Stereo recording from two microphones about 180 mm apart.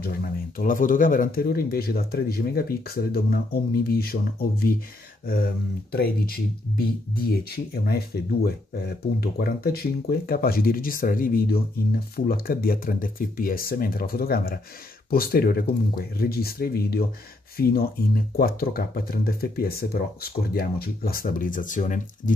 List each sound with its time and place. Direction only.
0.0 s speech: 55° left (ahead or behind)